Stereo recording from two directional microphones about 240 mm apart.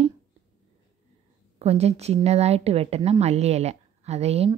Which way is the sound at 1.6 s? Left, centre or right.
Right.